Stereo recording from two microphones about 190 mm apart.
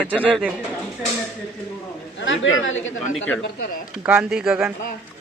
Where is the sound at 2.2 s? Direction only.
85° left.